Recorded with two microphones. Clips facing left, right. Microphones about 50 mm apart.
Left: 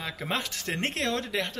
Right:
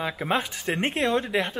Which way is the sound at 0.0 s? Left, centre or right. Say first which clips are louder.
Right 6 dB; centre.